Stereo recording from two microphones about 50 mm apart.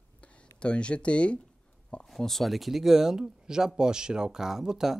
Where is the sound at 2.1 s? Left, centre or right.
Centre.